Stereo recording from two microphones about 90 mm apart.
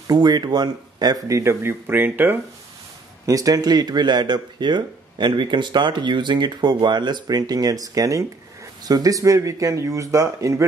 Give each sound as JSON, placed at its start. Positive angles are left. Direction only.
{"t": 0.0, "sound": "speech", "side_deg": -50}
{"t": 3.3, "sound": "speech", "side_deg": -40}